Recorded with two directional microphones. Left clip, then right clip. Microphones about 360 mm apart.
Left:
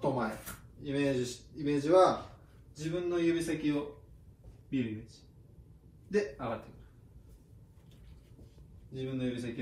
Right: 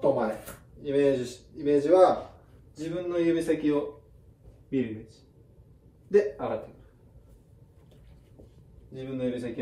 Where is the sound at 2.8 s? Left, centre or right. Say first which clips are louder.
Right 4 dB; right.